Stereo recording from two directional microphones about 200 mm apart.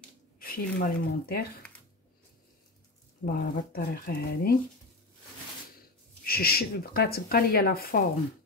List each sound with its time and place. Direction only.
0.4 s speech: 50° left (ahead or behind)
3.2 s speech: 60° left (ahead or behind)
3.7 s speech: 50° left (ahead or behind)
6.2 s speech: 50° left (ahead or behind)